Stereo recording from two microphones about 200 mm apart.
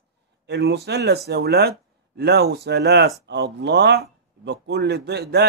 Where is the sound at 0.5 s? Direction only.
55° right (ahead or behind).